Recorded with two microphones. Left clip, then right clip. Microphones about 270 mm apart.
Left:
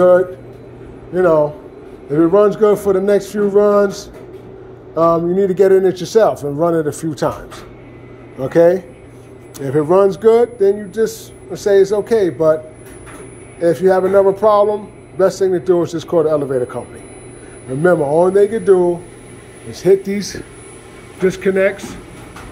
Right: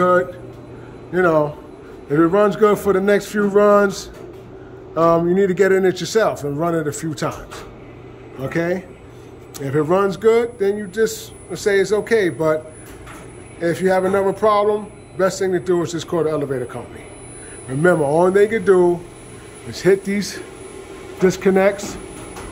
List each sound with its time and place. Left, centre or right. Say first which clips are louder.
1.1 s a man's voice: left 4 dB; centre
5.0 s a man's voice: left 2 dB; centre
13.6 s a man's voice: left 5 dB; centre
17.8 s a man's voice: left 3 dB; centre